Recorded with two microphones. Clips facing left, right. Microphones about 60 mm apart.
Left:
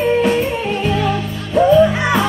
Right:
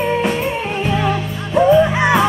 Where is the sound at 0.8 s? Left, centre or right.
Centre.